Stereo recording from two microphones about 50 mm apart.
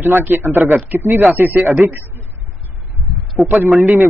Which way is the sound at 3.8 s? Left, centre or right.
Right.